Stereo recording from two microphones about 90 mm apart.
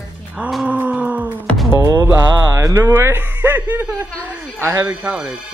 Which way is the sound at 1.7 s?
30° right (ahead or behind).